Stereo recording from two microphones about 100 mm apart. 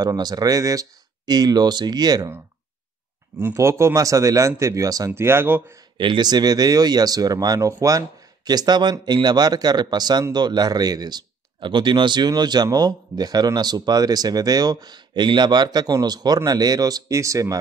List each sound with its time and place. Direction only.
0.0 s speech: 40° right (ahead or behind)
3.3 s speech: 25° right (ahead or behind)
5.2 s speech: 25° right (ahead or behind)
5.9 s speech: 50° right (ahead or behind); by 17.6 s 35° right (ahead or behind)